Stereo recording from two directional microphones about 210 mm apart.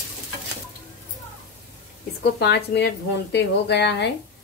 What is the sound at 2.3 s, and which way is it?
A woman's voice, 55° left (ahead or behind).